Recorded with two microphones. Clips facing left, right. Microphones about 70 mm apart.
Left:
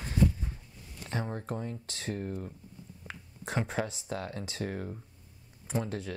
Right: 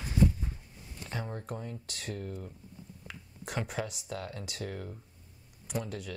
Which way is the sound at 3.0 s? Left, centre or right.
Left.